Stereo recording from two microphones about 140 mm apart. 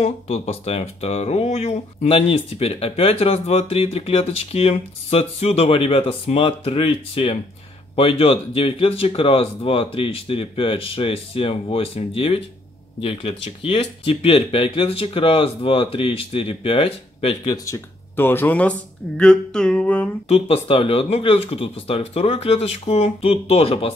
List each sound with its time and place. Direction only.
0.0 s speech: 50° left (ahead or behind)
17.6 s speech: 20° left (ahead or behind)
20.2 s speech: 45° left (ahead or behind)